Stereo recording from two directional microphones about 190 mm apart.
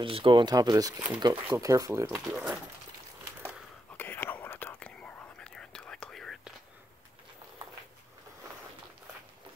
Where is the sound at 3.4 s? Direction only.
5° right (ahead or behind).